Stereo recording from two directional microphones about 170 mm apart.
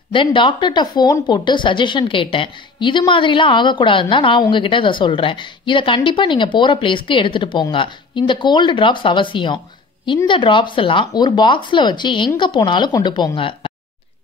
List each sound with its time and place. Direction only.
0.1 s speech: 30° left (ahead or behind)